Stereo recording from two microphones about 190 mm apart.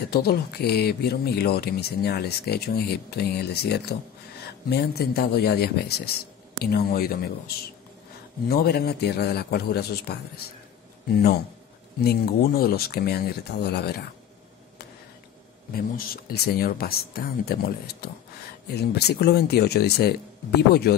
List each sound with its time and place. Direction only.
0.1 s speech: 55° left (ahead or behind)
12.0 s speech: 55° left (ahead or behind)
15.7 s speech: 50° left (ahead or behind)